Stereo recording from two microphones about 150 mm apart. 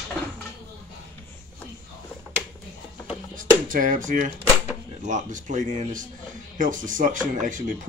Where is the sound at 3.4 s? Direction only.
65° right (ahead or behind).